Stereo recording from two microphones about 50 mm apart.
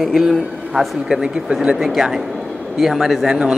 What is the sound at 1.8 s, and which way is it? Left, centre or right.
Speech, centre.